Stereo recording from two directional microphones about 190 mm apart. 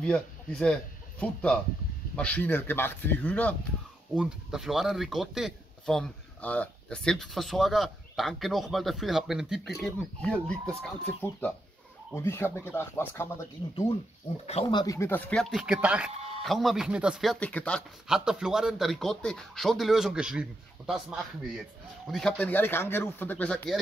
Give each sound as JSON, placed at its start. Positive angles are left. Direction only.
{"t": 0.0, "sound": "speech", "side_deg": 5}
{"t": 4.1, "sound": "speech", "side_deg": -5}
{"t": 12.1, "sound": "speech", "side_deg": 10}
{"t": 14.4, "sound": "speech", "side_deg": 30}
{"t": 15.5, "sound": "speech", "side_deg": -5}
{"t": 16.1, "sound": "a sound", "side_deg": -30}
{"t": 16.4, "sound": "speech", "side_deg": 0}